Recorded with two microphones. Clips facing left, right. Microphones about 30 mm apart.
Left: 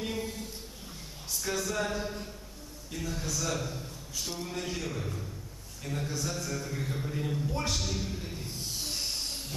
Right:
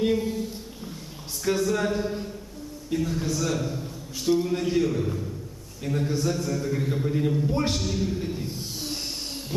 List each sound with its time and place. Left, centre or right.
0.0 s a sound: centre
1.6 s a man's voice: centre
4.8 s a man's voice: centre
6.0 s a man's voice: right
6.3 s a man's voice: centre
8.3 s a sound: centre